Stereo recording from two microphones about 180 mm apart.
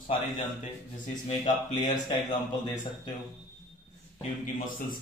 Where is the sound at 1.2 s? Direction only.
25° left (ahead or behind).